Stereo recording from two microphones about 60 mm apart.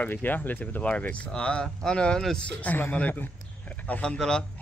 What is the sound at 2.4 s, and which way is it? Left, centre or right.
Speech, left.